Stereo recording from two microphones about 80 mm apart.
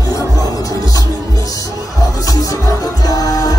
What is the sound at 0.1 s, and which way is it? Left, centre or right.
Music, left.